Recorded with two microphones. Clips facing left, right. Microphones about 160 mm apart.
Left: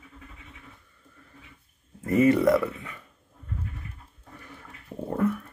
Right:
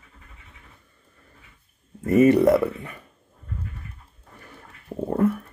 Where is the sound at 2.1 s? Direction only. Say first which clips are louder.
Right 4 dB; 20° right (ahead or behind).